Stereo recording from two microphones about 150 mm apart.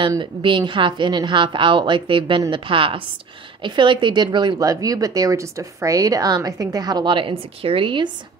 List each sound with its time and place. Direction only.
0.1 s a woman's voice: 35° right (ahead or behind)